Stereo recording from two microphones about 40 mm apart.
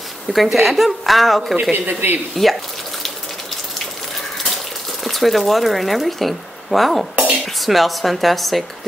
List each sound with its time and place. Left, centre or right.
0.3 s speech: centre
1.7 s a man's voice: right
2.3 s speech: centre
5.0 s speech: centre
7.2 s music: right
7.4 s speech: centre